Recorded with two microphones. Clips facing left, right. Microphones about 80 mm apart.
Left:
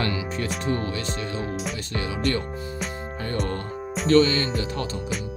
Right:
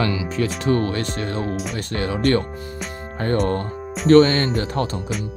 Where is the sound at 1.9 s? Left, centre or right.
Right.